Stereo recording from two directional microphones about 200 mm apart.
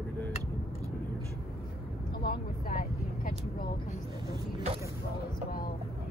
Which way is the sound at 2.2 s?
45° left (ahead or behind).